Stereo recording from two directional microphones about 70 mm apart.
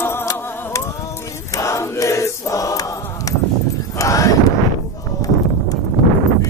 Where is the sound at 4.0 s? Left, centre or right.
Left.